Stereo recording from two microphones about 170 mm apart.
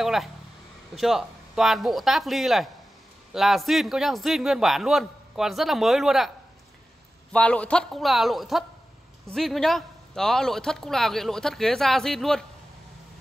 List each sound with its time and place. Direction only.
0.0 s a man's voice: centre (ahead or behind)
7.3 s a man's voice: 5° left (ahead or behind)